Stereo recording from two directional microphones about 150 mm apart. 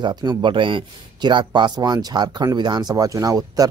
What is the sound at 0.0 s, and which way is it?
Speech, 30° right (ahead or behind).